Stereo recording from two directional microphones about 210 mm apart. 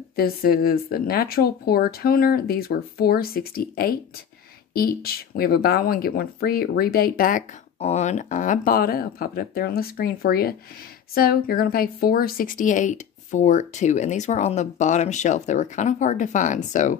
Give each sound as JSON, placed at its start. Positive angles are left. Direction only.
{"t": 0.1, "sound": "speech", "side_deg": 45}